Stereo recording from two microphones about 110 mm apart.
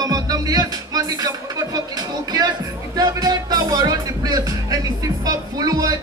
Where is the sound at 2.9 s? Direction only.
35° right (ahead or behind).